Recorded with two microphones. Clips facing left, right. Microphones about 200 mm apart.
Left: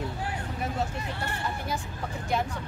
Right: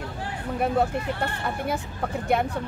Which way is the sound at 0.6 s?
60° right (ahead or behind).